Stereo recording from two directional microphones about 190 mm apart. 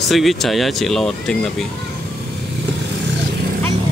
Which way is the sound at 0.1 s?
Centre (ahead or behind).